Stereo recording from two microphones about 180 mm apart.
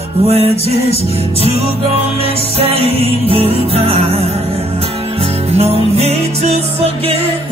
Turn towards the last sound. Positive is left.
turn(degrees=-35)  # may be behind; listen again after turning